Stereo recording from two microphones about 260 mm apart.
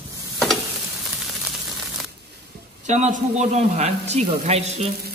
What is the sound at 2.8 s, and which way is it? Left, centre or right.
A man's voice, right.